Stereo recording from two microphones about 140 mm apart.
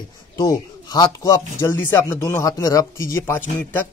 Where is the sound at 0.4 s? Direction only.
25° left (ahead or behind).